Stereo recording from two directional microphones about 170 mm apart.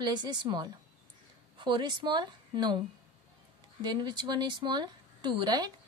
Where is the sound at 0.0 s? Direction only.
25° right (ahead or behind).